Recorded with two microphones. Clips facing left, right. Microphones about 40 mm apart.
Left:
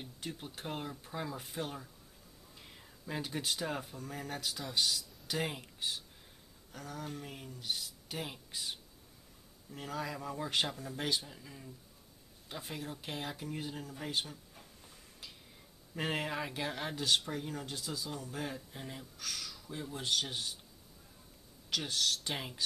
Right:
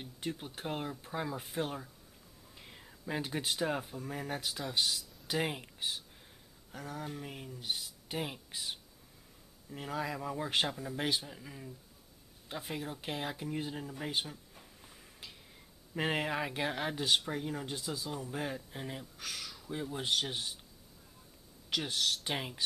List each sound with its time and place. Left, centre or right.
0.0 s speech: centre
21.6 s speech: centre